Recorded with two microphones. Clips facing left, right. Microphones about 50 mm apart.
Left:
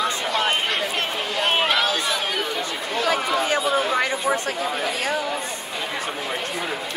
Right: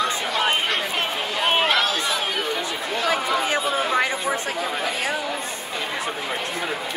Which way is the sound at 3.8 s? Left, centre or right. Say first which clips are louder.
Right 1 dB; centre.